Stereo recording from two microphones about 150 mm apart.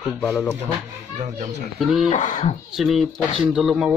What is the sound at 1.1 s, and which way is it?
Speech, 50° right (ahead or behind).